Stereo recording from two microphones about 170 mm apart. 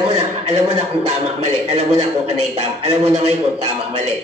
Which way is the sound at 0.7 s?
40° right (ahead or behind).